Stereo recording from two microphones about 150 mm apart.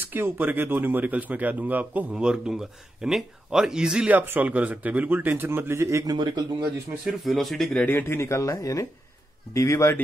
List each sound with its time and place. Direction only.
0.0 s speech: 15° right (ahead or behind)
7.1 s speech: centre (ahead or behind)
7.8 s speech: 15° left (ahead or behind)